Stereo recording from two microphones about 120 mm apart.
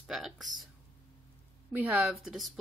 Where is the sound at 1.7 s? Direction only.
10° right (ahead or behind).